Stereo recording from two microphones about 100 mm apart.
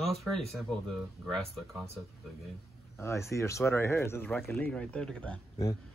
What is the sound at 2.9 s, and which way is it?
A man's voice, 25° left (ahead or behind).